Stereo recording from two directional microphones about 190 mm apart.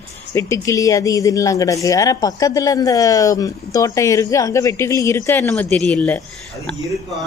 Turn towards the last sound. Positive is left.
turn(degrees=5)  # may be behind; listen again after turning